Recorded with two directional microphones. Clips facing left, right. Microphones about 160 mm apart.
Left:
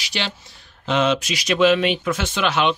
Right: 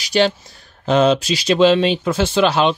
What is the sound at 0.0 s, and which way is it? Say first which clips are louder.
Speech: right 12 dB; 40° right (ahead or behind).